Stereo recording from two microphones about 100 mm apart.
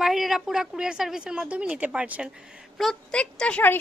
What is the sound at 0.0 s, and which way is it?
A woman's voice, 5° right (ahead or behind).